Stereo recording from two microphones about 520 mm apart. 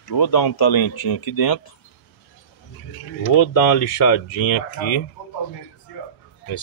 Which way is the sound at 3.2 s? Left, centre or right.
Left.